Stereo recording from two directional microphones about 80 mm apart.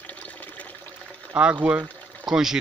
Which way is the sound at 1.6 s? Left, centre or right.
Centre.